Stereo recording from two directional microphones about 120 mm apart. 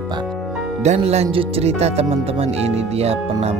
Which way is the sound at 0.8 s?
65° right (ahead or behind).